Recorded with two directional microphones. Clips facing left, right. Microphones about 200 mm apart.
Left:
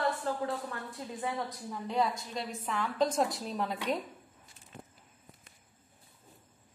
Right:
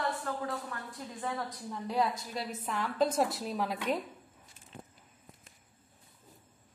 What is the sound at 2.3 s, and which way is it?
A woman's voice, 5° right (ahead or behind).